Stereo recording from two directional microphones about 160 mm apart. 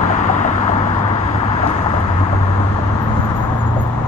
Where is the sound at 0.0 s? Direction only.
50° left (ahead or behind).